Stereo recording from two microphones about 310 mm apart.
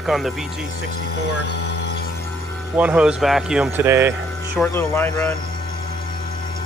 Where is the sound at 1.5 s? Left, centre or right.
Left.